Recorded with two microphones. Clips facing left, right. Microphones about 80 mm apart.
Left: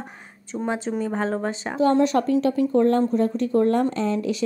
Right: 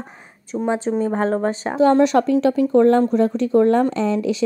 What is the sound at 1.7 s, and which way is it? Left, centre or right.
A woman's voice, right.